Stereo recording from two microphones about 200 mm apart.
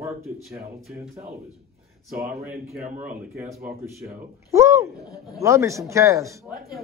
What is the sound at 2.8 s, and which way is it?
Speech, 40° right (ahead or behind).